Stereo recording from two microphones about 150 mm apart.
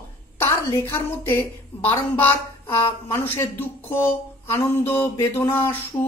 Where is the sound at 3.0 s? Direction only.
15° left (ahead or behind).